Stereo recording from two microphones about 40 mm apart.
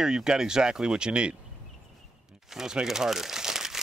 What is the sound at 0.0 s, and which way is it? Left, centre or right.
Speech, centre.